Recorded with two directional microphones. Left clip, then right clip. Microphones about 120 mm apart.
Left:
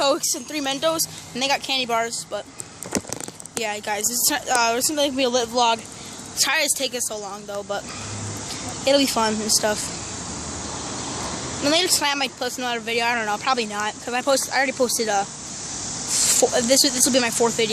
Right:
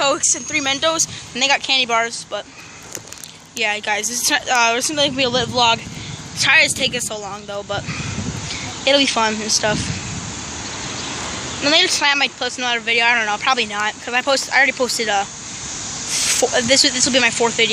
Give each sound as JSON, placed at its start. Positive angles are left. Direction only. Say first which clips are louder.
{"t": 0.2, "sound": "speech", "louder": "right 6 dB", "side_deg": 5}
{"t": 3.6, "sound": "speech", "louder": "right 6 dB", "side_deg": 0}
{"t": 8.5, "sound": "speech", "louder": "right 3 dB", "side_deg": 10}
{"t": 11.6, "sound": "speech", "louder": "right 5 dB", "side_deg": 5}
{"t": 16.1, "sound": "a sound", "louder": "right 2 dB", "side_deg": 20}
{"t": 16.5, "sound": "speech", "louder": "right 4 dB", "side_deg": 10}